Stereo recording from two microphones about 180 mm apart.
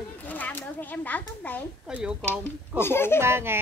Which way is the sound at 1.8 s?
5° right (ahead or behind).